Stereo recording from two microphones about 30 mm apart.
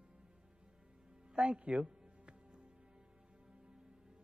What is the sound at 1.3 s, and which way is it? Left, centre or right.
Speech, right.